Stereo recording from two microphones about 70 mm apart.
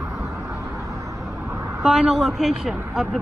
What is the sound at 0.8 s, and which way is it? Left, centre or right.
Vehicle, right.